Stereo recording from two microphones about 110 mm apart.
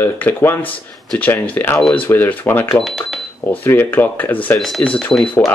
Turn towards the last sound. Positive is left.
turn(degrees=15)  # may be behind; listen again after turning